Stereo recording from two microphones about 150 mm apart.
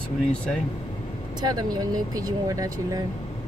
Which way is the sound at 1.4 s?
25° right (ahead or behind).